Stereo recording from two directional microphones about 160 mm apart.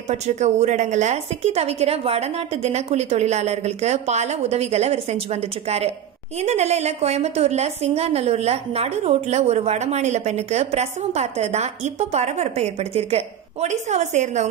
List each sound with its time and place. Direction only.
0.1 s a woman's voice: 45° right (ahead or behind)